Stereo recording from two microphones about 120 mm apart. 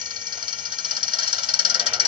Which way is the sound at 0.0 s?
40° right (ahead or behind).